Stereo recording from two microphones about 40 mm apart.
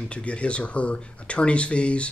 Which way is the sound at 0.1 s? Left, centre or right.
Left.